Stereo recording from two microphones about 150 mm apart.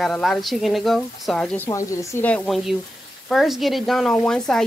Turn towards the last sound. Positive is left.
turn(degrees=5)  # may be behind; listen again after turning